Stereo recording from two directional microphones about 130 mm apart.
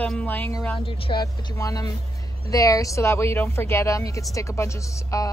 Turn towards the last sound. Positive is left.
turn(degrees=25)  # may be behind; listen again after turning